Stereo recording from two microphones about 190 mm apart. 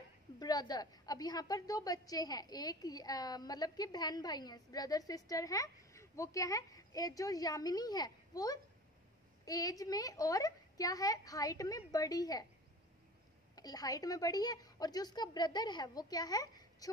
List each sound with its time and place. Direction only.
0.4 s a woman's voice: 20° left (ahead or behind)
13.6 s a woman's voice: 20° left (ahead or behind)